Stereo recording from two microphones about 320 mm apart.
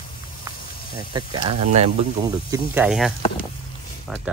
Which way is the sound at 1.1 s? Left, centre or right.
Centre.